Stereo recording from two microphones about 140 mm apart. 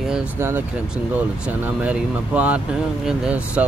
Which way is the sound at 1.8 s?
10° right (ahead or behind).